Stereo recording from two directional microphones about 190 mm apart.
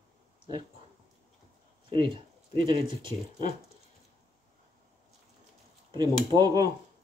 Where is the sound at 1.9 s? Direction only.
25° right (ahead or behind).